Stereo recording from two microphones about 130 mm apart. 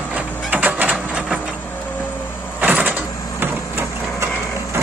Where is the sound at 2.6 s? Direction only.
15° right (ahead or behind).